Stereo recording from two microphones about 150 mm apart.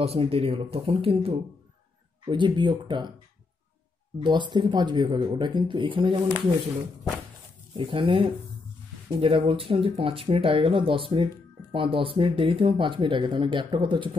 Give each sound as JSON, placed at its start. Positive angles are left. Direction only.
{"t": 0.0, "sound": "speech", "side_deg": -40}
{"t": 4.2, "sound": "speech", "side_deg": -30}
{"t": 7.7, "sound": "speech", "side_deg": -35}